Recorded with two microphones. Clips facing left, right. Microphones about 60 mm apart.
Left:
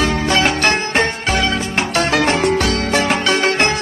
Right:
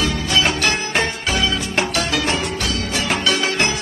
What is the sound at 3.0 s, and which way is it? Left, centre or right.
Music, left.